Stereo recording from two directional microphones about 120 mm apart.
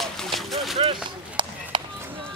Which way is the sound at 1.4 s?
40° right (ahead or behind).